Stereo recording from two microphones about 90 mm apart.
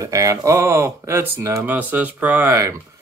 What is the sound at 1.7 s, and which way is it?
Speech, 20° right (ahead or behind).